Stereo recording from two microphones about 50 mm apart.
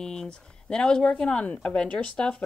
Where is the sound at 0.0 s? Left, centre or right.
Centre.